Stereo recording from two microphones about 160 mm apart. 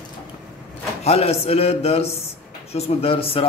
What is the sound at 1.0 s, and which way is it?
A man's voice, 40° left (ahead or behind).